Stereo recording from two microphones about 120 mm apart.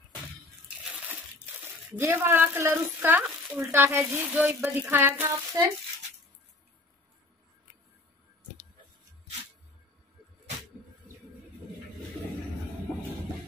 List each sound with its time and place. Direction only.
2.0 s a woman's voice: 20° right (ahead or behind)
5.6 s a child's voice: 30° right (ahead or behind)